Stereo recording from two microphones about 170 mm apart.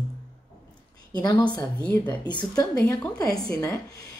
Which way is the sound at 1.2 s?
25° left (ahead or behind).